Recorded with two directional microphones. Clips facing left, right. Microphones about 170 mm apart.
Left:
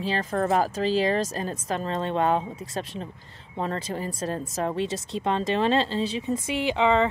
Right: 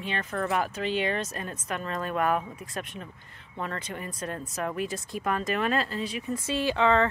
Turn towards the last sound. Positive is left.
turn(degrees=15)  # may be behind; listen again after turning